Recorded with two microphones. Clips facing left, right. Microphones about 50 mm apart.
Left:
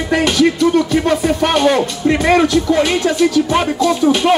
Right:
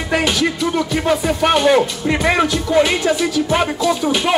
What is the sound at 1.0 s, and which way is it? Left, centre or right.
Music, centre.